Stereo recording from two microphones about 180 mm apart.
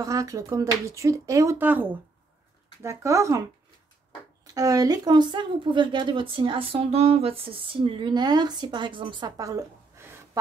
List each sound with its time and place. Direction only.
0.0 s speech: 20° right (ahead or behind)
4.6 s speech: 20° right (ahead or behind)